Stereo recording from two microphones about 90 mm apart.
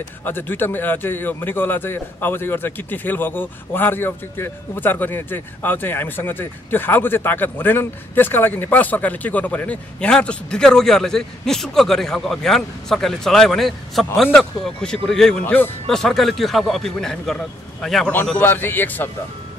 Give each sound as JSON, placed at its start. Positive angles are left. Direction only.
{"t": 0.2, "sound": "a man's voice", "side_deg": 20}
{"t": 15.4, "sound": "a man's voice", "side_deg": 20}
{"t": 15.9, "sound": "a man's voice", "side_deg": 5}
{"t": 18.4, "sound": "a man's voice", "side_deg": 25}